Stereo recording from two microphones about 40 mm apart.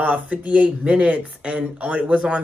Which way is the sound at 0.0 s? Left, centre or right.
Right.